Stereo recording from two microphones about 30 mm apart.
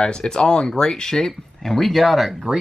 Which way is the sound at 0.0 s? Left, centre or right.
Left.